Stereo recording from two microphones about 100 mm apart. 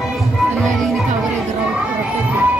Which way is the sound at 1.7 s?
15° right (ahead or behind).